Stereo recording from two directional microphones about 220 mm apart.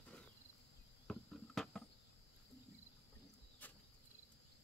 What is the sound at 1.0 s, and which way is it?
Cricket, centre (ahead or behind).